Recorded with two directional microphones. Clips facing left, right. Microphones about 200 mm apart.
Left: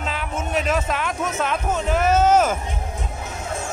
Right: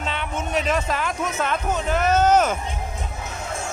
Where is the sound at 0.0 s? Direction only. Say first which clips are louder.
Even; centre (ahead or behind).